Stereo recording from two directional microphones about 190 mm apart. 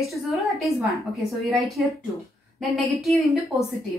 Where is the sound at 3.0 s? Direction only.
Centre (ahead or behind).